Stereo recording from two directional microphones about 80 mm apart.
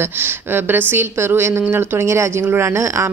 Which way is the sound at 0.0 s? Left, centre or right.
Right.